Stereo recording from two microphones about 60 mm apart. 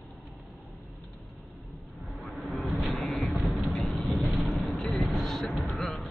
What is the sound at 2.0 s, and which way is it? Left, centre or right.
Vehicle, centre.